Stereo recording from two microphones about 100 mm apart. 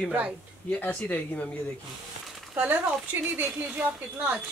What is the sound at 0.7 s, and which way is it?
Speech, 15° left (ahead or behind).